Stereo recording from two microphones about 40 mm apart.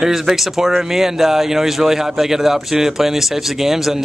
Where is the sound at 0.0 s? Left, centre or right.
Centre.